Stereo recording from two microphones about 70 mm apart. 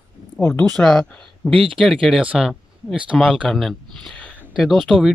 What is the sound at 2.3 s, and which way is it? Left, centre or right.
Speech, centre.